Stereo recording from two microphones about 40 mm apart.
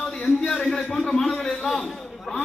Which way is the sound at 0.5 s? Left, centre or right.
Centre.